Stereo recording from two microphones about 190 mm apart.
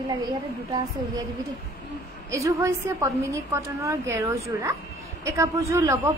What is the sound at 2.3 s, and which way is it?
A woman's voice, 15° right (ahead or behind).